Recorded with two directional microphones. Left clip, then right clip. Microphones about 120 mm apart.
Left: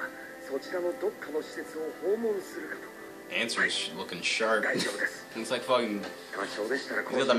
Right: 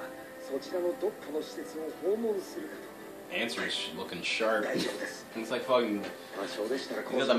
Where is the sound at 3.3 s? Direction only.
30° left (ahead or behind).